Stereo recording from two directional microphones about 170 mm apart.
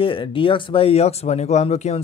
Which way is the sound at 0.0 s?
30° left (ahead or behind).